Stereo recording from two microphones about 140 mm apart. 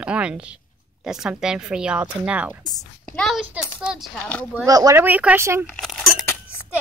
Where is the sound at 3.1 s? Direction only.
5° left (ahead or behind).